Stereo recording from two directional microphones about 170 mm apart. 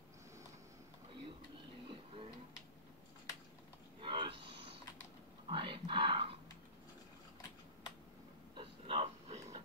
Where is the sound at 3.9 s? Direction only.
30° right (ahead or behind).